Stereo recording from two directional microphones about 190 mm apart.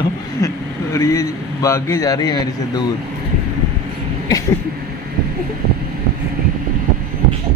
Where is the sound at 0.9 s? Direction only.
15° left (ahead or behind).